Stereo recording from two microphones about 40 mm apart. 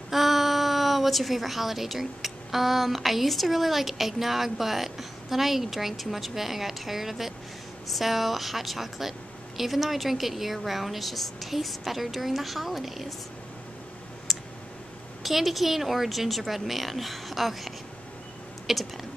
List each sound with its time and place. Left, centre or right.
0.1 s a woman's voice: centre
14.3 s clicking: centre
15.2 s a woman's voice: centre